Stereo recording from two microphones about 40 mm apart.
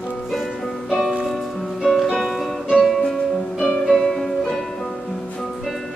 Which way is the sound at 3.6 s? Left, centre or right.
Centre.